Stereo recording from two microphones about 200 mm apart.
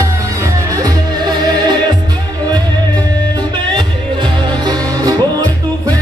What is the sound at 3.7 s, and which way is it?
Music, 25° right (ahead or behind).